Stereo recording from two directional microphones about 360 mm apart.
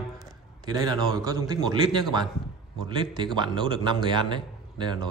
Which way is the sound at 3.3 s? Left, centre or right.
Centre.